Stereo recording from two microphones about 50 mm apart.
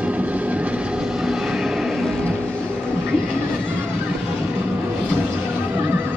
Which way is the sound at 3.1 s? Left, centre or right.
Right.